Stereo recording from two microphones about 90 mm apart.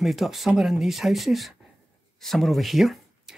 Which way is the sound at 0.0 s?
Centre (ahead or behind).